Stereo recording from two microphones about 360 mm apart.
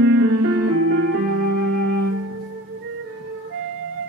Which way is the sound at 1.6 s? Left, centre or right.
Right.